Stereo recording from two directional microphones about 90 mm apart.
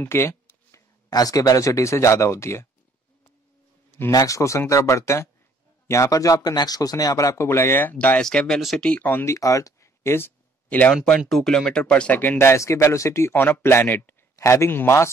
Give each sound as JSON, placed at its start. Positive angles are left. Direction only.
{"t": 0.0, "sound": "a sound", "side_deg": 30}
{"t": 1.1, "sound": "speech", "side_deg": 45}
{"t": 4.1, "sound": "speech", "side_deg": 40}
{"t": 8.2, "sound": "speech", "side_deg": 10}
{"t": 8.8, "sound": "speech", "side_deg": 20}
{"t": 9.3, "sound": "speech", "side_deg": 40}
{"t": 10.7, "sound": "speech", "side_deg": 15}
{"t": 11.2, "sound": "a man's voice", "side_deg": 5}